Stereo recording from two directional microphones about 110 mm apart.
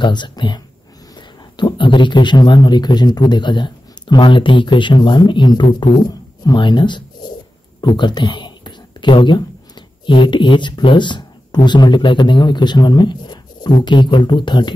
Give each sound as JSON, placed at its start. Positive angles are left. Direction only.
{"t": 0.0, "sound": "speech", "side_deg": 45}